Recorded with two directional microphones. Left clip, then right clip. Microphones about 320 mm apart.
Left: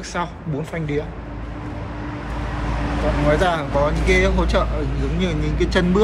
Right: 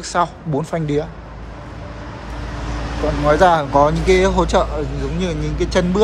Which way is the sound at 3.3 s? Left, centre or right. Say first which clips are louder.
Right 7 dB; centre.